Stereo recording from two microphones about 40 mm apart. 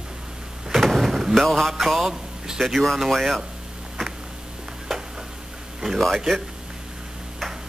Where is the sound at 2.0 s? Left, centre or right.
Centre.